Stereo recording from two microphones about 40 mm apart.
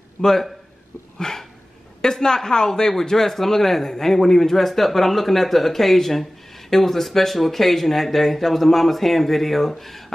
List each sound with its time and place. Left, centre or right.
0.2 s speech: centre
1.1 s a sound: centre
2.0 s speech: centre